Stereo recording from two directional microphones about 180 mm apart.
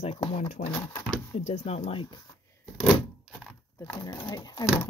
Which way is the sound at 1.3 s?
40° left (ahead or behind).